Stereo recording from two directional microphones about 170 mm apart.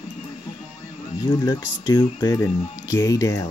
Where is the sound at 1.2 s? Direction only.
25° left (ahead or behind).